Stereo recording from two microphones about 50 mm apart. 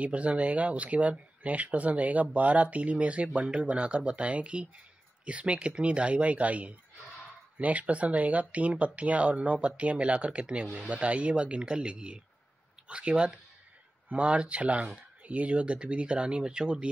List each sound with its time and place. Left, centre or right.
0.0 s speech: right